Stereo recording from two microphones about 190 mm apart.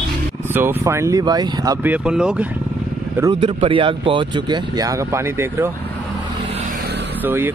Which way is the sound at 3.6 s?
25° right (ahead or behind).